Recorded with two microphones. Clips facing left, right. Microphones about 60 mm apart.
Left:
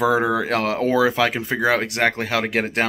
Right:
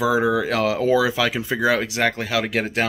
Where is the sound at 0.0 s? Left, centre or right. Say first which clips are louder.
Even; left.